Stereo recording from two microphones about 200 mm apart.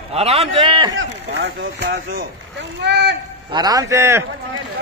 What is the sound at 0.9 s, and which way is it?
Speech, 65° right (ahead or behind).